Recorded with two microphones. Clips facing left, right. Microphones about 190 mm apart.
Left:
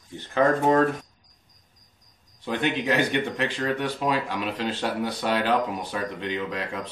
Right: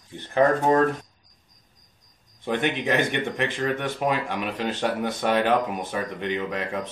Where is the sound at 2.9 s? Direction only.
50° right (ahead or behind).